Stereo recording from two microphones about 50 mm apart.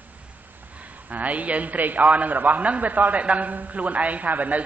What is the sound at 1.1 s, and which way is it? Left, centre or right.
A man's voice, right.